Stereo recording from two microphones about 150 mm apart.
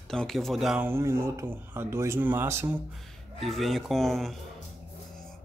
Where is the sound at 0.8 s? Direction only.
15° right (ahead or behind).